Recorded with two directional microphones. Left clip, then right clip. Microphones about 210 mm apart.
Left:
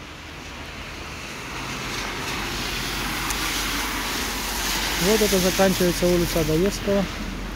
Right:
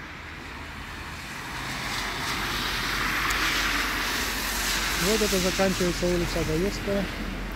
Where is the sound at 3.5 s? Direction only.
60° left (ahead or behind); by 5.5 s 45° left (ahead or behind).